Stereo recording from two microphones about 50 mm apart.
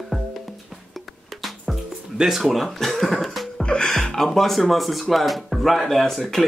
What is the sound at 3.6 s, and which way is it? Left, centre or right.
Music, centre.